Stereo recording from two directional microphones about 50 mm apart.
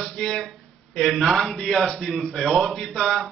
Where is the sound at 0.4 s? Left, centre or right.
Centre.